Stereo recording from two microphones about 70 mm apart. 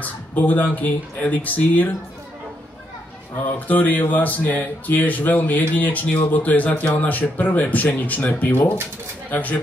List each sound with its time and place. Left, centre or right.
0.0 s speech: left
3.5 s speech: left